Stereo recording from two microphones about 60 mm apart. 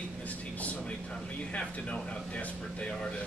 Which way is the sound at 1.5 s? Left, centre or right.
Left.